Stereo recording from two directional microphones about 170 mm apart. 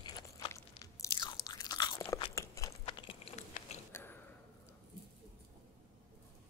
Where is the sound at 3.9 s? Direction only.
15° left (ahead or behind).